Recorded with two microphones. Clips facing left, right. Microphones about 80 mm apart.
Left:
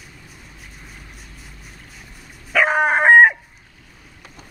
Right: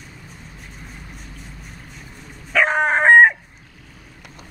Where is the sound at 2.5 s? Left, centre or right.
Centre.